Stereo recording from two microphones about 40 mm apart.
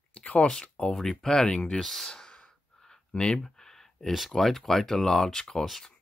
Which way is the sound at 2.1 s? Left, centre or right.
Centre.